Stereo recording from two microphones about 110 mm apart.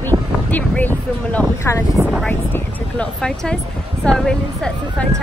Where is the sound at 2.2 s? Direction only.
15° left (ahead or behind).